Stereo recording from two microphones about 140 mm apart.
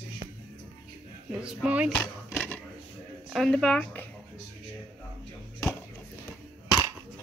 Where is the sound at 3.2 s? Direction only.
Centre (ahead or behind).